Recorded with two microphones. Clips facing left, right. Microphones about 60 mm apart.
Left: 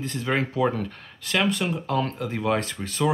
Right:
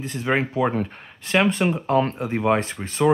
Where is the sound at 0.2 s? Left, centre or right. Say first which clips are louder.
Right 2 dB; right.